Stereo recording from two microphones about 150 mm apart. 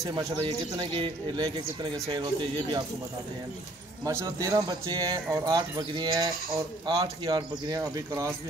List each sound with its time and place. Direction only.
0.1 s speech: 30° right (ahead or behind)
4.0 s speech: 20° right (ahead or behind)